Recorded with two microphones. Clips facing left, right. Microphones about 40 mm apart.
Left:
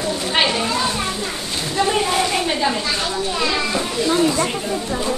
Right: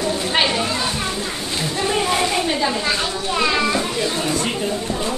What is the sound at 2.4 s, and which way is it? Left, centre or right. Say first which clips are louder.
Speech: left 1 dB; centre.